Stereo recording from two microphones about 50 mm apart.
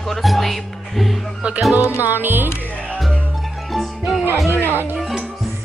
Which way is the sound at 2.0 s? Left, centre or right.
Right.